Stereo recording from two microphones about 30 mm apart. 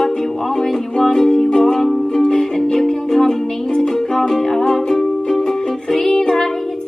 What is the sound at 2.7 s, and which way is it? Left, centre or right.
Music, centre.